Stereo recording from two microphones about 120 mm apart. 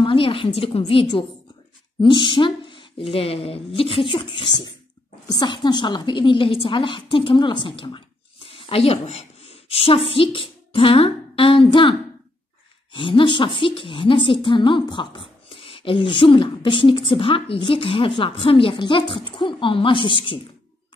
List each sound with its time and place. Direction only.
0.0 s a woman's voice: 45° left (ahead or behind)
2.0 s a woman's voice: 40° left (ahead or behind)
12.9 s a woman's voice: 45° left (ahead or behind)